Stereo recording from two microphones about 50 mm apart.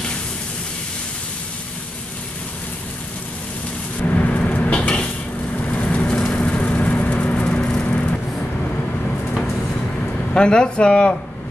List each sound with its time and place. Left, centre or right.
4.0 s a sound: left
5.7 s vehicle: left
10.3 s speech: centre